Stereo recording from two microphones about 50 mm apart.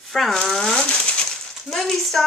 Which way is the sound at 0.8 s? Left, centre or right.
Centre.